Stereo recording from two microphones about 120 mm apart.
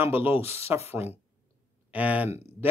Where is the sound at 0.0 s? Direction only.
15° right (ahead or behind).